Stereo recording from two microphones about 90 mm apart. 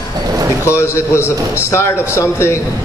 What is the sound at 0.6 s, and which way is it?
A man's voice, 30° left (ahead or behind).